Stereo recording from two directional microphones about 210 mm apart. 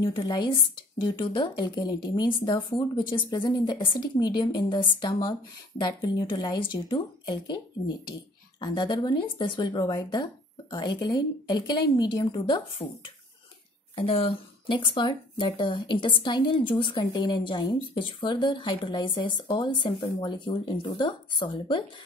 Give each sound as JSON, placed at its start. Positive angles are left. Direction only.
{"t": 0.0, "sound": "speech", "side_deg": 20}
{"t": 13.9, "sound": "speech", "side_deg": 25}